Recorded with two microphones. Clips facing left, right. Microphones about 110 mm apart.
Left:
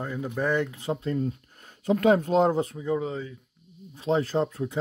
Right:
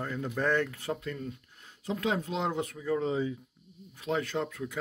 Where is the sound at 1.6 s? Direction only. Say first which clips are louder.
Left 10 dB; 55° left (ahead or behind); by 2.8 s 35° left (ahead or behind).